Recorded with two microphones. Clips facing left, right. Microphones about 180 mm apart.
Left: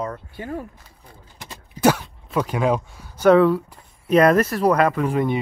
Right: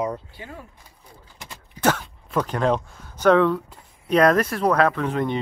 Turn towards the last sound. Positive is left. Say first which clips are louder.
# left 2 dB
turn(degrees=10)  # may be behind; listen again after turning